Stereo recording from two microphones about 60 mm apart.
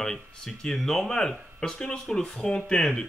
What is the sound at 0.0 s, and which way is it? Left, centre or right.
Speech, centre.